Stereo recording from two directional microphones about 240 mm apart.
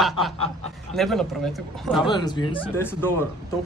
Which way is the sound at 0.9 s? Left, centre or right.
Centre.